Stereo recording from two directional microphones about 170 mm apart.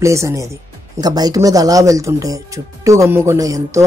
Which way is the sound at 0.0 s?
15° right (ahead or behind).